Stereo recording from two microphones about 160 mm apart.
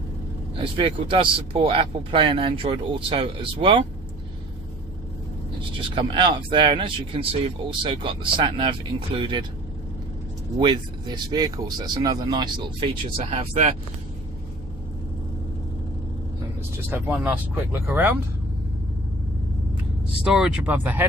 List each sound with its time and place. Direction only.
0.6 s speech: 35° right (ahead or behind)
5.8 s speech: 30° right (ahead or behind)
10.6 s speech: 30° right (ahead or behind)
13.2 s speech: 45° right (ahead or behind)
16.9 s speech: 10° right (ahead or behind)
20.2 s speech: 5° right (ahead or behind)